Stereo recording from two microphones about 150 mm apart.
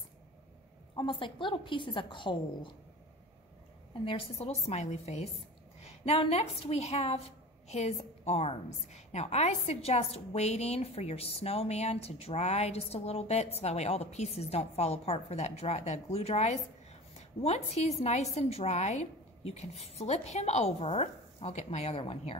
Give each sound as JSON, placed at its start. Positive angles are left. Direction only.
{"t": 0.9, "sound": "a woman's voice", "side_deg": 35}
{"t": 3.9, "sound": "a woman's voice", "side_deg": 35}